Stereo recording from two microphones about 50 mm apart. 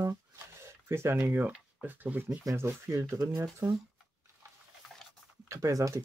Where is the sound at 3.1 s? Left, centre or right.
Right.